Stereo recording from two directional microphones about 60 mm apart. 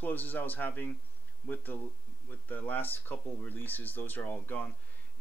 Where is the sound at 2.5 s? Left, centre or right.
Left.